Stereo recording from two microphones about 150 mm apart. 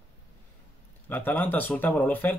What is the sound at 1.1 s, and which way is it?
Speech, 10° left (ahead or behind).